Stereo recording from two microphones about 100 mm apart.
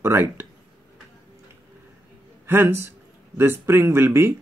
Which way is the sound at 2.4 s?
25° right (ahead or behind).